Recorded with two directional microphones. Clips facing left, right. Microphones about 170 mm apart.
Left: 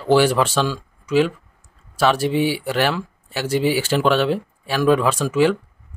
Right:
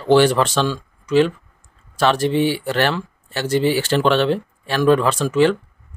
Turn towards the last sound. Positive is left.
turn(degrees=5)  # may be behind; listen again after turning